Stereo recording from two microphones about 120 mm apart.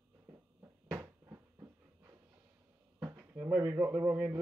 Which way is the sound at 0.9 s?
25° right (ahead or behind).